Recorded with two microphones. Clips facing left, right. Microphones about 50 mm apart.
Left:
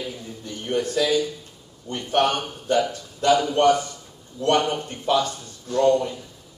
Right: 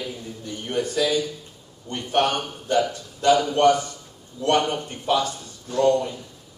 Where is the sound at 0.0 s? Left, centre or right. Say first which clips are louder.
Even; centre.